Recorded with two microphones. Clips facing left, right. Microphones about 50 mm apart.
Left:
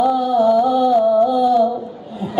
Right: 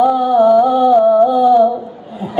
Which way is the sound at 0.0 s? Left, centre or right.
Centre.